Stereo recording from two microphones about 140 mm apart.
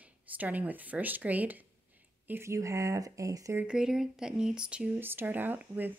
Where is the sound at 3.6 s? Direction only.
5° right (ahead or behind).